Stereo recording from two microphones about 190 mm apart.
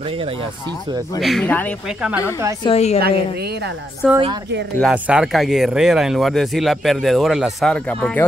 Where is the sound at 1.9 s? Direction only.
5° right (ahead or behind).